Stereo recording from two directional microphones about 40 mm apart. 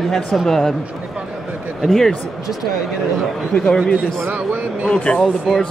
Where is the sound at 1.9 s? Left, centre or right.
Centre.